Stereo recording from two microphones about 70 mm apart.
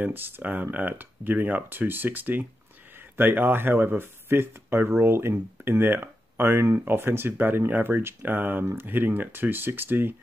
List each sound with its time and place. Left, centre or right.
0.0 s speech: right